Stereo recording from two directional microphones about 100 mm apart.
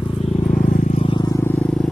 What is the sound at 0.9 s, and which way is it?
Vehicle, 60° left (ahead or behind).